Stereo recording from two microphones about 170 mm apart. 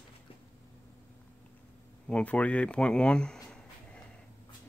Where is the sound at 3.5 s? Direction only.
5° left (ahead or behind).